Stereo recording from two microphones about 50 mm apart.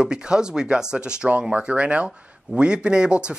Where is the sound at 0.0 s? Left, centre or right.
Centre.